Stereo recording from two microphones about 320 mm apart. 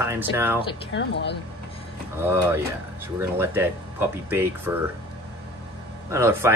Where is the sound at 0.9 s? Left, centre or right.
Left.